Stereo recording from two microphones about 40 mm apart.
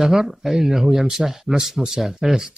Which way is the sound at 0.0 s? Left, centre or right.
Centre.